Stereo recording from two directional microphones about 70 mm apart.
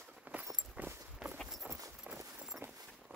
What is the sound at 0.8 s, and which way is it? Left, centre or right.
Walk, right.